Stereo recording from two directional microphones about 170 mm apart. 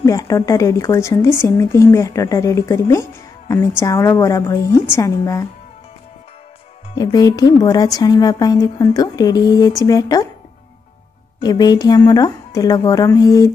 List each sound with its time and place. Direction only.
0.0 s speech: 20° left (ahead or behind)
7.0 s a woman's voice: 20° left (ahead or behind)
11.4 s a woman's voice: 25° left (ahead or behind)